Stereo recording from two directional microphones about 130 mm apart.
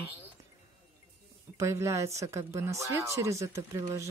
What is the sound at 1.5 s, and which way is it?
Speech, 25° right (ahead or behind).